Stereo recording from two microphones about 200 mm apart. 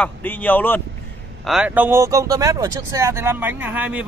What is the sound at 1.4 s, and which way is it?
Speech, 5° right (ahead or behind).